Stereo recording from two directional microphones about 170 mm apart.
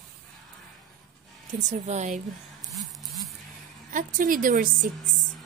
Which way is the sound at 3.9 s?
50° right (ahead or behind).